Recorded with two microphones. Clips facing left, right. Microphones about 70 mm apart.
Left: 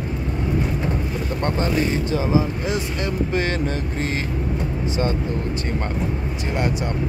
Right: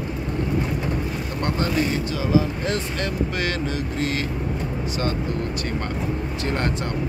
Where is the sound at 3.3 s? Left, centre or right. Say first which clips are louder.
Left 3 dB; left.